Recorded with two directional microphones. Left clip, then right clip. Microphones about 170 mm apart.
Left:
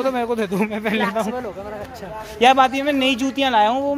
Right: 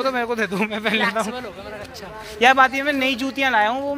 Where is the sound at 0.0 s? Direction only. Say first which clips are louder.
Left 1 dB; 20° left (ahead or behind).